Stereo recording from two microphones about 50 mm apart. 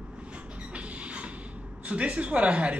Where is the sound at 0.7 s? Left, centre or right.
Right.